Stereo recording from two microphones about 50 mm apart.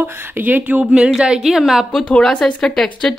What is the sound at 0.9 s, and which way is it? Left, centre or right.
Speech, right.